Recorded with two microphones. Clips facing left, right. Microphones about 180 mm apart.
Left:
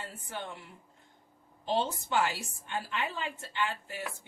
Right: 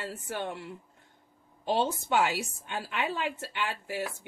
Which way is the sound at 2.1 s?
75° right (ahead or behind).